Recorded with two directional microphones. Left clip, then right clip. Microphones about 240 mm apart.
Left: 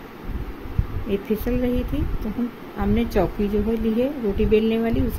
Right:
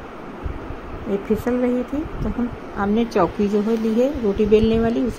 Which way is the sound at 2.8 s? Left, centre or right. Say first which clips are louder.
Right 3 dB; centre.